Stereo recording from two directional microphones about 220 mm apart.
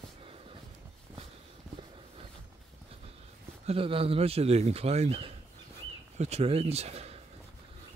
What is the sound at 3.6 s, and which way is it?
Speech, 25° right (ahead or behind).